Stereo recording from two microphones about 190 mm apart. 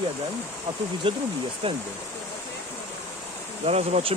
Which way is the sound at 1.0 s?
25° right (ahead or behind).